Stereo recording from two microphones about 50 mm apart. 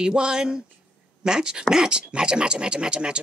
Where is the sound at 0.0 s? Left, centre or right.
Centre.